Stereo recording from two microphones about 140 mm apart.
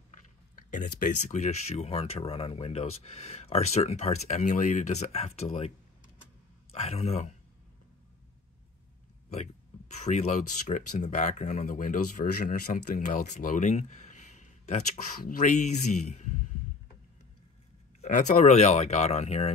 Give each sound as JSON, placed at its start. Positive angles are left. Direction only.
{"t": 0.6, "sound": "speech", "side_deg": 70}
{"t": 6.7, "sound": "speech", "side_deg": 45}
{"t": 9.9, "sound": "speech", "side_deg": 55}
{"t": 18.0, "sound": "speech", "side_deg": 60}